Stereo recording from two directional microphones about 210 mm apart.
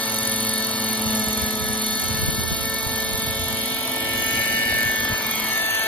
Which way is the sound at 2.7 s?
5° left (ahead or behind).